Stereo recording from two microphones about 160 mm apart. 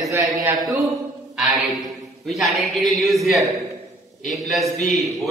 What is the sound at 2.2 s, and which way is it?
A man's voice, centre (ahead or behind).